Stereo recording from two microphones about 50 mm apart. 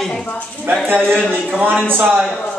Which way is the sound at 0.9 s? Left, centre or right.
Right.